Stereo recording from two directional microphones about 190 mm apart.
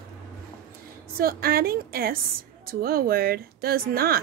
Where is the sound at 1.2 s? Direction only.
50° right (ahead or behind).